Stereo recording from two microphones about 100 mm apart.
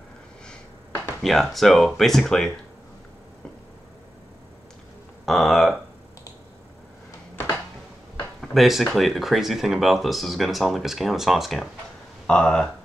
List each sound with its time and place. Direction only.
0.5 s speech: 5° left (ahead or behind)
5.2 s speech: centre (ahead or behind)
7.3 s a sound: 20° left (ahead or behind)
8.4 s speech: centre (ahead or behind)